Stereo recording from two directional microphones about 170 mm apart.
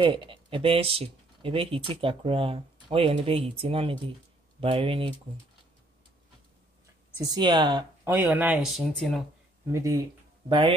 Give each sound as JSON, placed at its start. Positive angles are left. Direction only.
{"t": 0.0, "sound": "speech", "side_deg": -30}
{"t": 7.2, "sound": "speech", "side_deg": -25}
{"t": 8.0, "sound": "speech", "side_deg": -10}
{"t": 9.7, "sound": "speech", "side_deg": -20}